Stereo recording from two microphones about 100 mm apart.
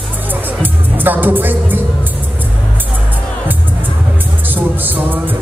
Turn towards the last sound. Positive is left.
turn(degrees=-20)  # may be behind; listen again after turning